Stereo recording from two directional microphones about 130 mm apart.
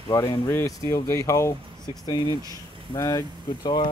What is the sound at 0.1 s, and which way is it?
Speech, 30° left (ahead or behind).